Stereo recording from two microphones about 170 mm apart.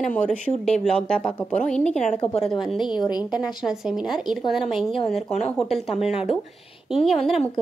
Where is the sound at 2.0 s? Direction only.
40° left (ahead or behind).